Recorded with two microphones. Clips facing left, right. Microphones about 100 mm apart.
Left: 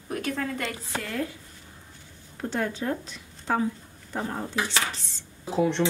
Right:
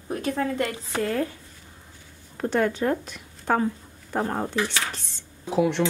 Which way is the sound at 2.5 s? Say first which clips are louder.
Right 6 dB; 60° right (ahead or behind).